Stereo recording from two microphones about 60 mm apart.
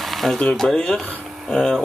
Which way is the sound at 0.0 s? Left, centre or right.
Centre.